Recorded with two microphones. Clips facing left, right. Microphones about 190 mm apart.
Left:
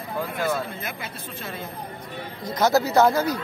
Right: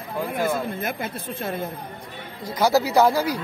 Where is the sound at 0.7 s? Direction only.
50° right (ahead or behind).